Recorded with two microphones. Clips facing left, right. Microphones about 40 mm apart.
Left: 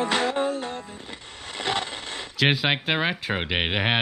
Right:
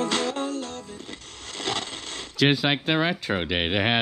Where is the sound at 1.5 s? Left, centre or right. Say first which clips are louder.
Left 2 dB; centre.